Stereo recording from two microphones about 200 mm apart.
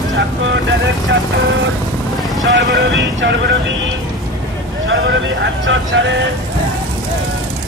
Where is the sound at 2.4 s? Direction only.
65° right (ahead or behind).